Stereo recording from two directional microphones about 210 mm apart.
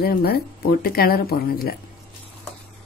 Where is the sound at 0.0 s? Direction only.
50° left (ahead or behind).